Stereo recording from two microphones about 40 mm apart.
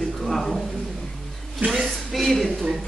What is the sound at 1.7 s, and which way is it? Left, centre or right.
Speech, centre.